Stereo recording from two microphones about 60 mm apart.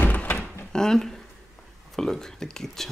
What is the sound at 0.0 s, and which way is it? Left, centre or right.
Door, left.